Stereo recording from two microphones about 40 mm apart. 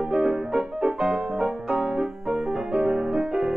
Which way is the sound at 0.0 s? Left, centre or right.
Right.